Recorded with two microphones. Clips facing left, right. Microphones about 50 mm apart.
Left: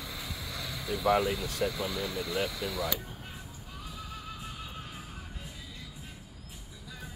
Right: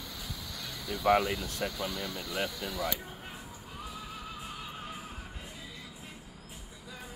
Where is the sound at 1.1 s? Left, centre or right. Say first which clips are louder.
Left 1 dB; right.